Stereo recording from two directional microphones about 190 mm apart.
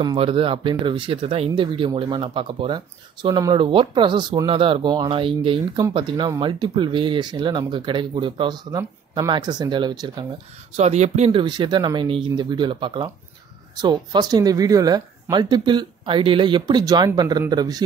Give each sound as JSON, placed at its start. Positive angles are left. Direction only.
{"t": 0.0, "sound": "speech", "side_deg": -25}
{"t": 10.8, "sound": "speech", "side_deg": -35}